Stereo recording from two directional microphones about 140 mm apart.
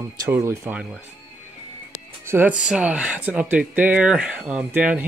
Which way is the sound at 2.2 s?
15° right (ahead or behind).